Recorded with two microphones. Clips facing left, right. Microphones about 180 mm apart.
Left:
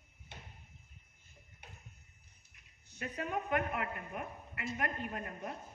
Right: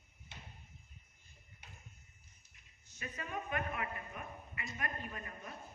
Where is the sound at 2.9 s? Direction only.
65° left (ahead or behind).